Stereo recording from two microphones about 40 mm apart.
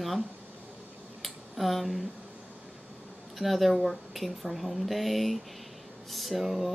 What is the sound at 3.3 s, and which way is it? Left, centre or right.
Speech, centre.